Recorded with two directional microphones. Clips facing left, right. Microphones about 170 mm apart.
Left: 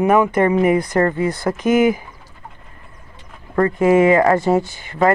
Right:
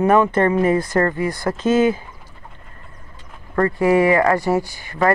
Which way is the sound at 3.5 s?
20° left (ahead or behind).